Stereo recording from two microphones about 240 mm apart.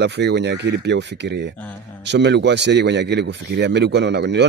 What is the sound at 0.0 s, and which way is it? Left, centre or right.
Speech, right.